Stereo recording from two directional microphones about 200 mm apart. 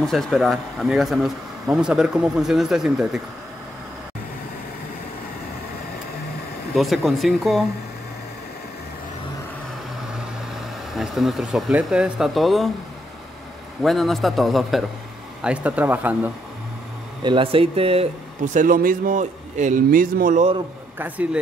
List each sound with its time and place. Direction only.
0.0 s speech: centre (ahead or behind)
6.7 s speech: centre (ahead or behind)
10.9 s speech: centre (ahead or behind)
13.8 s speech: centre (ahead or behind)
17.2 s a man's voice: 25° right (ahead or behind)
21.0 s speech: 5° right (ahead or behind)